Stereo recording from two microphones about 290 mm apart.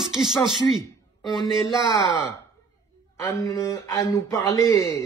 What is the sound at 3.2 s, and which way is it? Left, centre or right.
Speech, centre.